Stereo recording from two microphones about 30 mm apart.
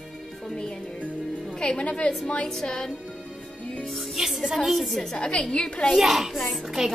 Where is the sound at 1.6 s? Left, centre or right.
Left.